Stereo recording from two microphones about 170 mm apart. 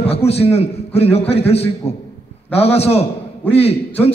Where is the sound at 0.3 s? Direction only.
35° left (ahead or behind).